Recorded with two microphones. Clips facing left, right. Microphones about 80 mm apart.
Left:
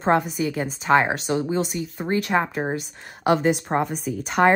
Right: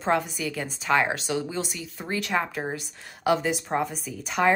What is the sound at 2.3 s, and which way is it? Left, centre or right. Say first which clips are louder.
Speech: left 2 dB; left.